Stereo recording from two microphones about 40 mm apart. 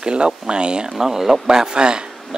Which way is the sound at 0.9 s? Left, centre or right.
Centre.